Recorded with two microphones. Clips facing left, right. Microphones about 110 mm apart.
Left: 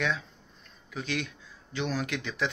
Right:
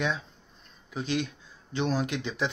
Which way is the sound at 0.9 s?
25° right (ahead or behind).